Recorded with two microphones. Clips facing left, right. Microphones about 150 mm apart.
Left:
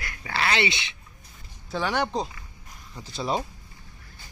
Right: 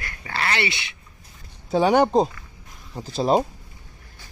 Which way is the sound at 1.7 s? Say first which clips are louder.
Right 9 dB; 45° right (ahead or behind).